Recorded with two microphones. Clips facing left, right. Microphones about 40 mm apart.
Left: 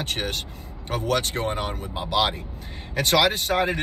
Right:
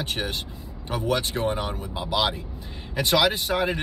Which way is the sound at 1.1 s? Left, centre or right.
Left.